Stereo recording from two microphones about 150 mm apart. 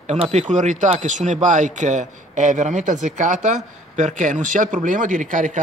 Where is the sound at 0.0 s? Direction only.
50° right (ahead or behind).